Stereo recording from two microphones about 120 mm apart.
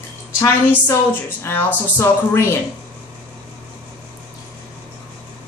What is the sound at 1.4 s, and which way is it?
Speech, 20° left (ahead or behind).